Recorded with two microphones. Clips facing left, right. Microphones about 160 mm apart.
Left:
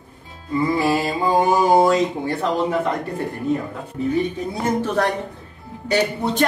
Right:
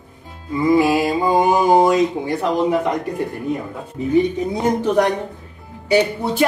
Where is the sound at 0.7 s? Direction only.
15° right (ahead or behind).